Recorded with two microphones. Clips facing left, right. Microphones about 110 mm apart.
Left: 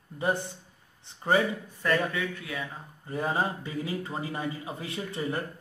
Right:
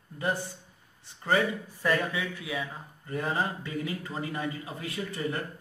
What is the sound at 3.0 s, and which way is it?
A man's voice, 20° left (ahead or behind).